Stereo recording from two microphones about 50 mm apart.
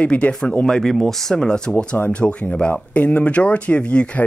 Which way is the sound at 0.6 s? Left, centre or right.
Centre.